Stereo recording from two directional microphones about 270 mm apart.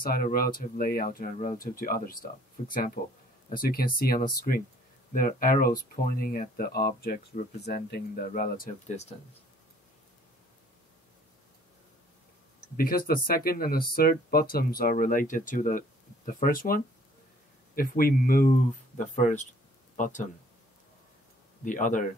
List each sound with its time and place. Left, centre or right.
0.0 s speech: left
12.7 s speech: left
21.6 s speech: left